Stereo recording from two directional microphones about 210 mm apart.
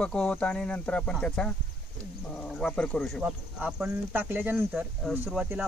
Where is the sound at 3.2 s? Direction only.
5° right (ahead or behind).